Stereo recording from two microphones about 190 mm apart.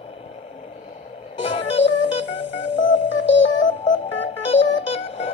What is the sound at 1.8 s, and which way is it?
Music, 75° left (ahead or behind).